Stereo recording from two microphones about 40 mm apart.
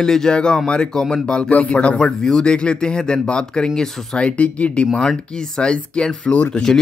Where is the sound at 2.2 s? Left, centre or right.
Left.